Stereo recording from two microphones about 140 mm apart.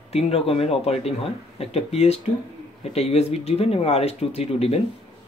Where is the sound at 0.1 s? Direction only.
45° left (ahead or behind).